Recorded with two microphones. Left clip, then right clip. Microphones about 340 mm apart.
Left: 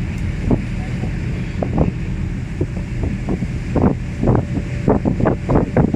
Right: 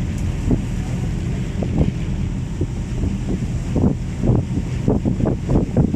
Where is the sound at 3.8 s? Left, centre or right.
Left.